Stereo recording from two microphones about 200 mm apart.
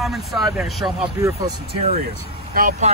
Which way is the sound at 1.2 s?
15° right (ahead or behind).